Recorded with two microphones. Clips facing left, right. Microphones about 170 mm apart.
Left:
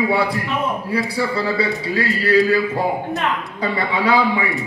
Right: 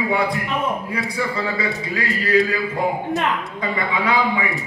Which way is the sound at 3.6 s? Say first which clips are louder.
Left 3 dB; 35° left (ahead or behind).